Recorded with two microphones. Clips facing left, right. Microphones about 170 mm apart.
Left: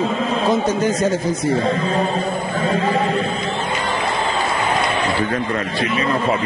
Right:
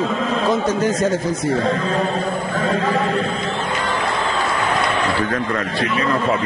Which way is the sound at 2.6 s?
20° left (ahead or behind).